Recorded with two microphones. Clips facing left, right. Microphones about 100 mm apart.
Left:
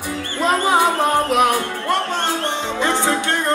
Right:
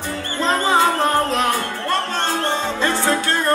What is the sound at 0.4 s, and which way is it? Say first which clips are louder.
Music: left 1 dB; 15° left (ahead or behind).